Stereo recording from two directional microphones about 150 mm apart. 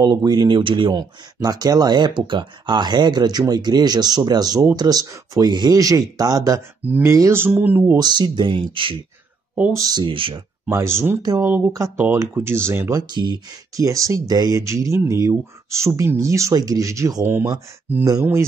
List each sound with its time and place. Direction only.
0.0 s speech: 30° right (ahead or behind)
6.8 s speech: 15° right (ahead or behind)
8.0 s speech: 30° right (ahead or behind)
10.6 s speech: 20° right (ahead or behind)
13.1 s speech: 30° right (ahead or behind)